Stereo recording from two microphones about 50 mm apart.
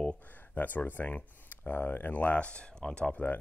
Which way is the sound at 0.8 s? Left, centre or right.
Left.